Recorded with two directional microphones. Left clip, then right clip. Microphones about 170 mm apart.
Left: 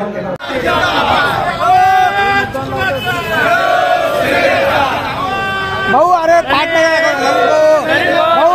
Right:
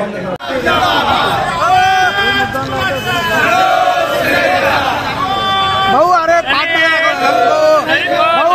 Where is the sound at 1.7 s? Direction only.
30° left (ahead or behind).